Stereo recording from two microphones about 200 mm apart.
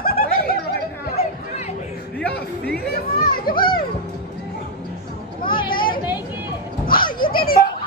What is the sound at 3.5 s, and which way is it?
Music, 25° left (ahead or behind).